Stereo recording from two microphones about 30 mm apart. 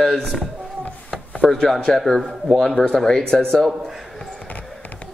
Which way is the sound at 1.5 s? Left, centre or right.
Centre.